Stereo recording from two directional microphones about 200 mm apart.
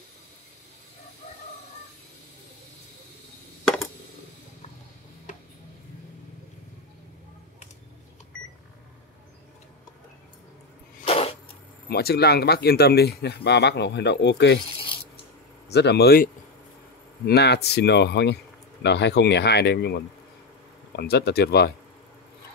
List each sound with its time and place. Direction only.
11.1 s a sound: 30° left (ahead or behind)
11.9 s speech: 50° left (ahead or behind)
15.7 s speech: 55° left (ahead or behind)
17.3 s speech: 55° left (ahead or behind)